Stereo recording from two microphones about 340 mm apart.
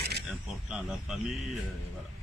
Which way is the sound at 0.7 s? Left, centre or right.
Centre.